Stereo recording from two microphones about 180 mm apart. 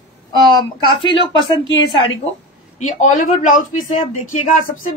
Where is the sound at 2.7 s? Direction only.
45° left (ahead or behind).